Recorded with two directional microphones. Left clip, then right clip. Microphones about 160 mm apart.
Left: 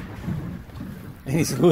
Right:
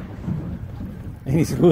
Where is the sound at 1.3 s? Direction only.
10° right (ahead or behind).